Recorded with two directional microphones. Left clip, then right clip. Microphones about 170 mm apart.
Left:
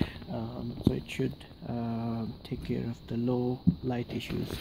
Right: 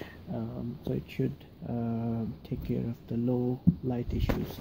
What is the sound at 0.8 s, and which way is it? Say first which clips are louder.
Speech: left 3 dB; 15° right (ahead or behind).